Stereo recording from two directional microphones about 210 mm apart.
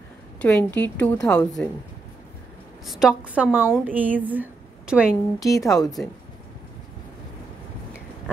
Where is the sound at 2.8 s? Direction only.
Centre (ahead or behind).